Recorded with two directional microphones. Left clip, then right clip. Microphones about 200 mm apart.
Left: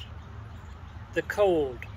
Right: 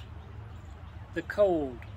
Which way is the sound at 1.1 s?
30° right (ahead or behind).